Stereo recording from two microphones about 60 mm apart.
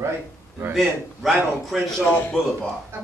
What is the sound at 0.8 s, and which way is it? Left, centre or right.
A man's voice, centre.